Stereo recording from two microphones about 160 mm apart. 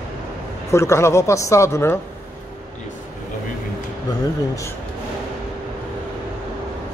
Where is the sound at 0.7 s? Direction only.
15° left (ahead or behind).